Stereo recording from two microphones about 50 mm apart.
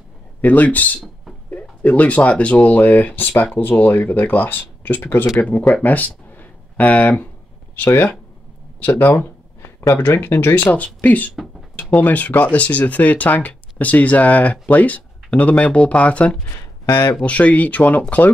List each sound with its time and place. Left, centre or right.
0.4 s speech: left
5.8 s a sound: left
7.0 s speech: left
8.7 s speech: left
9.6 s a sound: left
10.0 s speech: left
10.5 s speech: left
16.5 s speech: left
17.2 s speech: left